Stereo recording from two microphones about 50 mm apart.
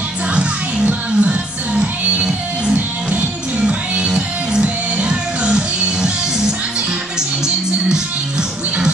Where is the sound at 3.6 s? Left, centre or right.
Right.